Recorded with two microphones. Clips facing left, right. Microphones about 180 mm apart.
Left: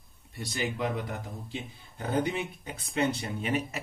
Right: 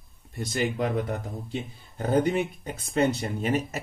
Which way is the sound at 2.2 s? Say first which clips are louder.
Right 7 dB; 45° right (ahead or behind).